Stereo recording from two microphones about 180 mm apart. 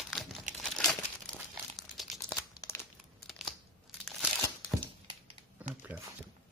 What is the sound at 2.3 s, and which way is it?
Crumpling, 20° left (ahead or behind).